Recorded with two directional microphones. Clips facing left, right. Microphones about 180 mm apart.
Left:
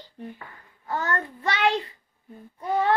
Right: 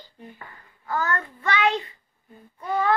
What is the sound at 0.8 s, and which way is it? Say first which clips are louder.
Child singing: right 1 dB; 30° left (ahead or behind).